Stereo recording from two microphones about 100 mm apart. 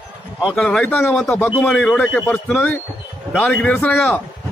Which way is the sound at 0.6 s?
5° left (ahead or behind).